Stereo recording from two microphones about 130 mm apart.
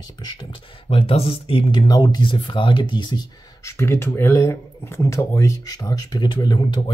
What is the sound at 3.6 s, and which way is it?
Speech, 20° left (ahead or behind).